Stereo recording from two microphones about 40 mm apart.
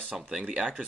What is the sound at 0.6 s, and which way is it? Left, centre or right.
Speech, right.